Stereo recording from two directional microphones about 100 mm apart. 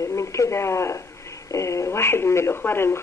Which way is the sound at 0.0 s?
30° left (ahead or behind).